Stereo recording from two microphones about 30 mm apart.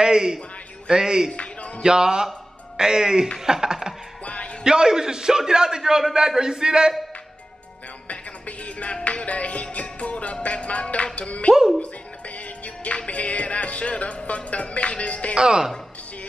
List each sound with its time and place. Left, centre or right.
0.0 s a man's voice: right
1.3 s a sound: left
1.8 s a man's voice: right
4.2 s music: left
4.6 s a man's voice: right
8.1 s music: left
12.6 s music: left
15.3 s a man's voice: right